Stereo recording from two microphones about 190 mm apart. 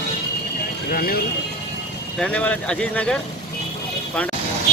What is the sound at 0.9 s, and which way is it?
Speech, 50° left (ahead or behind).